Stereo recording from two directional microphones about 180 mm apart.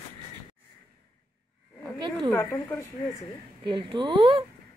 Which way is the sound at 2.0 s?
25° right (ahead or behind).